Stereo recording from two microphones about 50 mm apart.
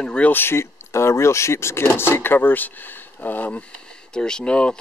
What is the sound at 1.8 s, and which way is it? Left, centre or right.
Speech, left.